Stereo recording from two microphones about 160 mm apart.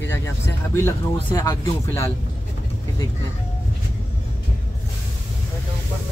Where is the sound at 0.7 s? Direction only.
20° left (ahead or behind).